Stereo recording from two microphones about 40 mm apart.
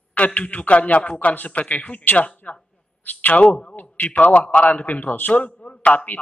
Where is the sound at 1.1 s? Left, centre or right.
Left.